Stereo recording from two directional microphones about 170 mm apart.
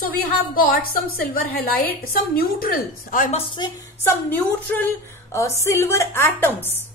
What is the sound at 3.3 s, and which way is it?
Speech, 25° left (ahead or behind).